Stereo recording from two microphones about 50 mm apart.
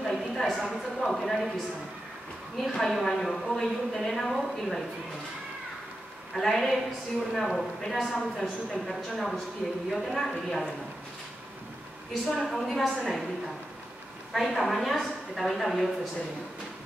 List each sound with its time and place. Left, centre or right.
0.0 s a sound: centre
0.7 s a woman's voice: centre
2.7 s a woman's voice: centre
6.3 s a woman's voice: centre
9.6 s a woman's voice: centre
12.1 s a woman's voice: centre
14.3 s a woman's voice: centre